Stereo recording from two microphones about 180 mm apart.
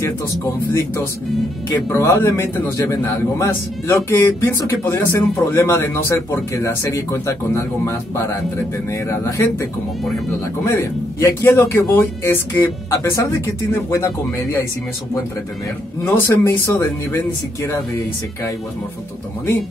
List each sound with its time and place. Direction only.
1.9 s a man's voice: 15° left (ahead or behind)
16.0 s a man's voice: 15° left (ahead or behind)